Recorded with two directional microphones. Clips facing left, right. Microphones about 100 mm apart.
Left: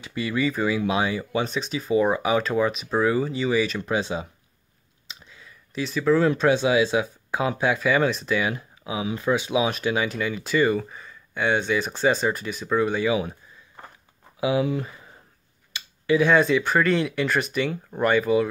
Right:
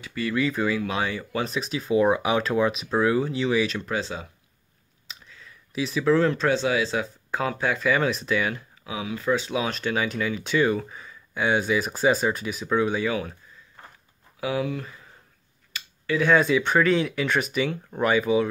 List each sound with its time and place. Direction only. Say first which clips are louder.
0.2 s speech: even; 5° left (ahead or behind)
3.8 s speech: left 4 dB; 15° left (ahead or behind)
5.8 s speech: even; centre (ahead or behind)
8.5 s speech: left 3 dB; 20° left (ahead or behind)
9.3 s speech: left 2 dB; 10° left (ahead or behind)
13.1 s speech: left 4 dB; 15° left (ahead or behind)
14.4 s speech: left 4 dB; 20° left (ahead or behind)
16.2 s speech: even; centre (ahead or behind)